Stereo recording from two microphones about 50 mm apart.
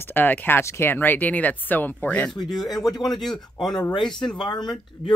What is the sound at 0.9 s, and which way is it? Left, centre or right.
Speech, left.